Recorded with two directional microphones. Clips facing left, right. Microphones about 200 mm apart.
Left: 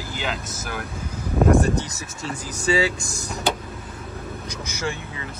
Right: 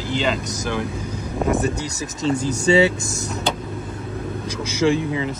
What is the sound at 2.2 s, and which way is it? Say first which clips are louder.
Speech: right 7 dB; 25° right (ahead or behind).